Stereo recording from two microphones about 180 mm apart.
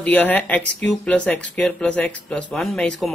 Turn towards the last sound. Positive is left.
turn(degrees=5)  # may be behind; listen again after turning